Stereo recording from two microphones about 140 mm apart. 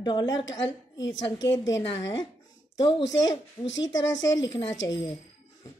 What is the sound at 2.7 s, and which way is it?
A woman's voice, 35° left (ahead or behind).